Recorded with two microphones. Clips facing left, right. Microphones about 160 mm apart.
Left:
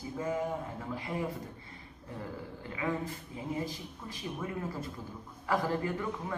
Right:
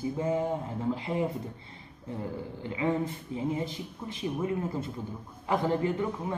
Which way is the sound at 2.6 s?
25° right (ahead or behind).